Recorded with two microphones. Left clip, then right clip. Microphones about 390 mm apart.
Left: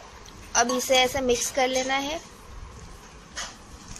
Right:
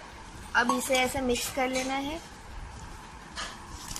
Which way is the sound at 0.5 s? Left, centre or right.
Centre.